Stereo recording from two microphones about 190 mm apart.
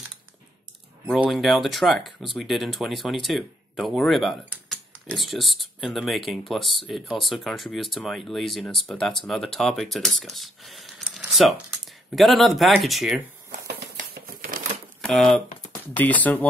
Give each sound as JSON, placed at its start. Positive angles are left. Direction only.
{"t": 1.0, "sound": "speech", "side_deg": -5}
{"t": 13.5, "sound": "a sound", "side_deg": -50}
{"t": 15.0, "sound": "speech", "side_deg": 0}